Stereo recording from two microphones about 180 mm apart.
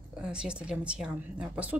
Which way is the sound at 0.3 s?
5° right (ahead or behind).